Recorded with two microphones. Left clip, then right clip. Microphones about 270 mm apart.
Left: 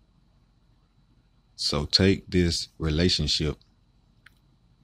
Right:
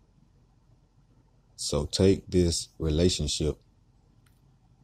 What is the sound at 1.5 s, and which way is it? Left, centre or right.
Speech, left.